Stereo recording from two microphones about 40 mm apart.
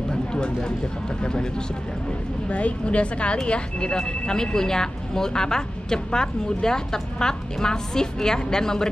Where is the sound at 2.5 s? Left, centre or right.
Left.